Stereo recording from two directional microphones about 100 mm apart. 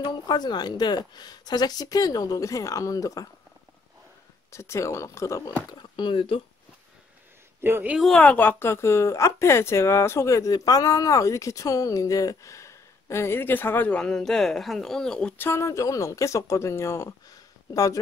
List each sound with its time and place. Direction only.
0.0 s speech: 45° left (ahead or behind)
4.5 s a woman's voice: 30° left (ahead or behind)
5.7 s speech: 45° left (ahead or behind); by 6.4 s 65° left (ahead or behind)
7.6 s speech: 20° right (ahead or behind)
8.2 s a woman's voice: 15° left (ahead or behind)
15.3 s a woman's voice: 25° left (ahead or behind)
17.3 s a sound: 35° left (ahead or behind)